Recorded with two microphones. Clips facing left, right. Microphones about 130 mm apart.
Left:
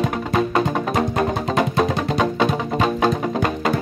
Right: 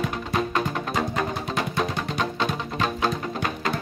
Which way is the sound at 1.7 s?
80° left.